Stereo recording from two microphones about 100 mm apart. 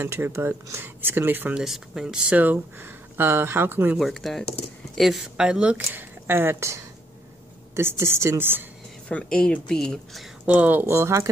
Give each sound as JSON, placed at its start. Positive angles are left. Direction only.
{"t": 0.0, "sound": "speech", "side_deg": -25}
{"t": 1.6, "sound": "speech", "side_deg": -5}
{"t": 4.0, "sound": "speech", "side_deg": 0}
{"t": 9.1, "sound": "speech", "side_deg": 10}
{"t": 10.4, "sound": "speech", "side_deg": -15}